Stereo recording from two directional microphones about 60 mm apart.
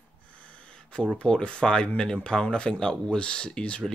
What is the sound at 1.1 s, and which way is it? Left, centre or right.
Speech, centre.